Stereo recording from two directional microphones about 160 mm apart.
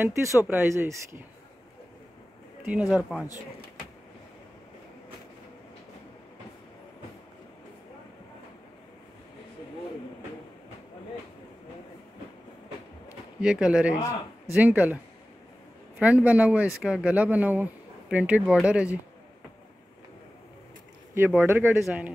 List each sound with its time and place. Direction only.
0.0 s speech: 15° right (ahead or behind)
2.6 s speech: 5° right (ahead or behind)
13.4 s speech: 5° right (ahead or behind)
16.0 s speech: 10° right (ahead or behind)
21.1 s speech: 15° right (ahead or behind)